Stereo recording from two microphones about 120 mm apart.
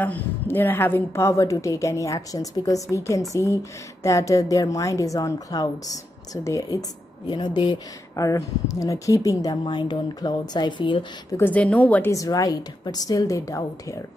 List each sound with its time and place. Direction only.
0.0 s a woman's voice: 15° left (ahead or behind)
7.2 s a woman's voice: 40° left (ahead or behind)
8.2 s a woman's voice: 30° left (ahead or behind)
11.3 s a woman's voice: 15° left (ahead or behind)
12.1 s a woman's voice: 30° left (ahead or behind)